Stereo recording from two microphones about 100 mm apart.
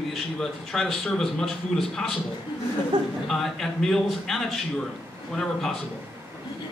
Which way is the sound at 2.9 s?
45° right (ahead or behind).